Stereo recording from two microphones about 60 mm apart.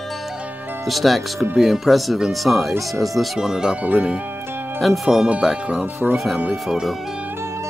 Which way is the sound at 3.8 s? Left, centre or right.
Right.